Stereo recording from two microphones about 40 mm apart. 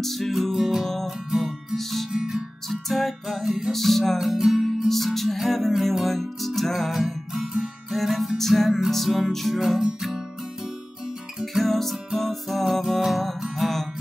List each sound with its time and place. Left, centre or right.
0.0 s music: centre
0.4 s music: centre
0.8 s music: centre
1.3 s music: centre
1.8 s music: centre
2.1 s music: centre
2.7 s music: centre
3.7 s music: centre
4.2 s music: centre
4.6 s music: centre
9.6 s music: centre
11.5 s music: centre